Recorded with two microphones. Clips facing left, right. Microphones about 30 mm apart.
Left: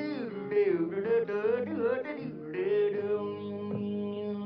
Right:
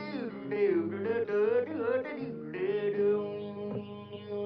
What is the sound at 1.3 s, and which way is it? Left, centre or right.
Music, left.